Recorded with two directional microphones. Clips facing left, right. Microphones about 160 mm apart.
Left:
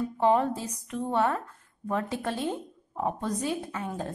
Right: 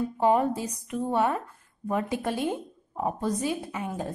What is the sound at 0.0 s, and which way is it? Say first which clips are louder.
A woman's voice: right 1 dB; 10° right (ahead or behind).